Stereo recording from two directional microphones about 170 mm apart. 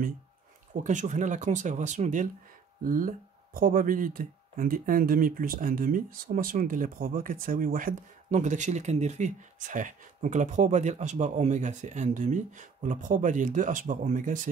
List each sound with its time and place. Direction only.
0.8 s speech: 45° right (ahead or behind)